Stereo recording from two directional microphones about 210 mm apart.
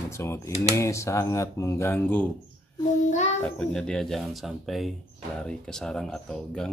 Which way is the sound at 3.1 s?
35° left (ahead or behind).